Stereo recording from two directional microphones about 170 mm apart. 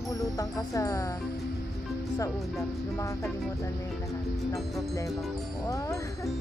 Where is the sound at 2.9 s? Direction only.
15° left (ahead or behind).